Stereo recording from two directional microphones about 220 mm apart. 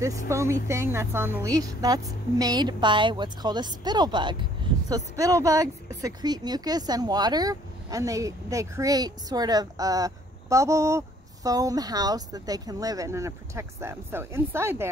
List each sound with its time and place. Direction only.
0.3 s a woman's voice: 10° right (ahead or behind)